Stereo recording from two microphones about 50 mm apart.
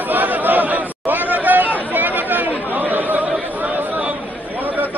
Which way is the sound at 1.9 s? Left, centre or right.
Right.